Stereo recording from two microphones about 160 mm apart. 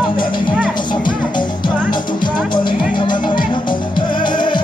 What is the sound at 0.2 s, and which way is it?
Music, 30° left (ahead or behind).